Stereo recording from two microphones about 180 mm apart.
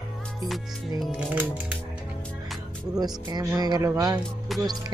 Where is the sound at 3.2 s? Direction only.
20° right (ahead or behind).